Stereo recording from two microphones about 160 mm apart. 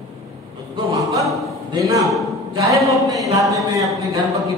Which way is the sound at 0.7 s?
20° right (ahead or behind).